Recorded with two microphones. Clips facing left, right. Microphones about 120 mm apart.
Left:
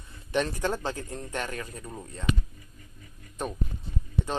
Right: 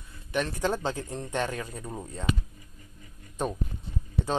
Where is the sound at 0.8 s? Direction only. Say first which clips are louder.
Right 2 dB; 20° right (ahead or behind).